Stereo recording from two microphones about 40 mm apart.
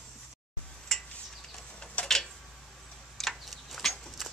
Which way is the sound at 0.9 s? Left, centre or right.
Centre.